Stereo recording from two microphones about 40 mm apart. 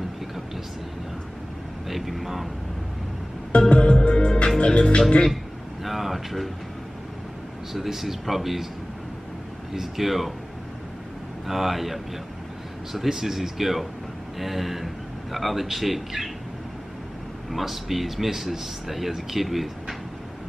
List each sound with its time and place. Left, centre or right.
1.9 s speech: centre
3.5 s music: left
5.9 s speech: centre
7.7 s speech: centre
9.8 s speech: centre
11.4 s speech: centre
17.5 s speech: centre